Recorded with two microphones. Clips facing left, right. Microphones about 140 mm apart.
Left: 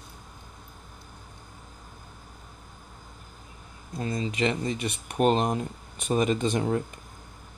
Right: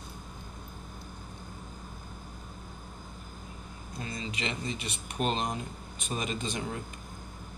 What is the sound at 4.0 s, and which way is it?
Speech, 40° left (ahead or behind).